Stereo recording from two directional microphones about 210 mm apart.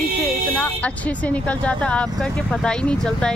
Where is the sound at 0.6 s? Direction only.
5° left (ahead or behind).